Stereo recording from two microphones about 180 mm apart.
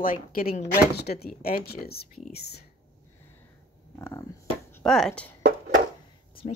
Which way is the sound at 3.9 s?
15° left (ahead or behind).